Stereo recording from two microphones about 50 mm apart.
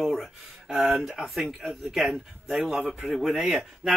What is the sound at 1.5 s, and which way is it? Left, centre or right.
A man's voice, centre.